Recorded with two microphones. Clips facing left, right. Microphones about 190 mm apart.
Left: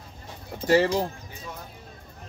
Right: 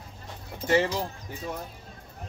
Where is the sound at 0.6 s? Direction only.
35° left (ahead or behind).